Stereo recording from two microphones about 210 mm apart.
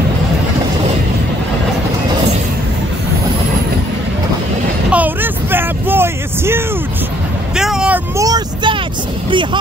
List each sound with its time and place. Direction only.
4.9 s a sound: 10° right (ahead or behind)
7.5 s vehicle: 5° right (ahead or behind)
8.2 s vehicle: 15° right (ahead or behind)
9.3 s music: 25° right (ahead or behind)